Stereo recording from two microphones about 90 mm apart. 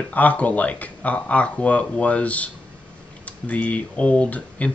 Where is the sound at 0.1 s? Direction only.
15° left (ahead or behind).